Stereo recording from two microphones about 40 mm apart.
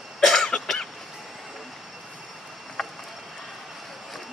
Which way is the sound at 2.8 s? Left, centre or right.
Centre.